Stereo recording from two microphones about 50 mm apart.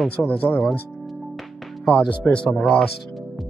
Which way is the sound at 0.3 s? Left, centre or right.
Left.